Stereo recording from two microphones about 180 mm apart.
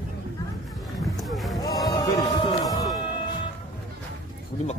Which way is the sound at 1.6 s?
20° left (ahead or behind).